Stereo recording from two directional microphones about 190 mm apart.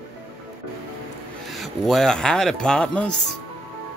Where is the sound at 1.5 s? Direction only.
Centre (ahead or behind).